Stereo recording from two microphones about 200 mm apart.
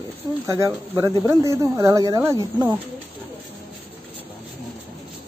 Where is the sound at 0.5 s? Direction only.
15° right (ahead or behind).